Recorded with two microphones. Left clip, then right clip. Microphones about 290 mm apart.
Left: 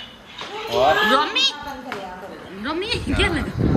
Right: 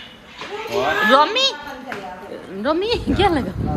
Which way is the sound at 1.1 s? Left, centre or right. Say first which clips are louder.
Right 4 dB; centre.